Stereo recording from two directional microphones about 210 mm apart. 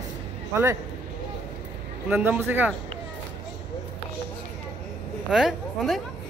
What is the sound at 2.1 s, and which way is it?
Speech, 10° right (ahead or behind).